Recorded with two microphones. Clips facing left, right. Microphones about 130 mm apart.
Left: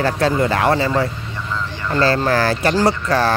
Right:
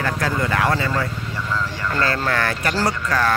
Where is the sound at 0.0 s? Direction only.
30° left (ahead or behind).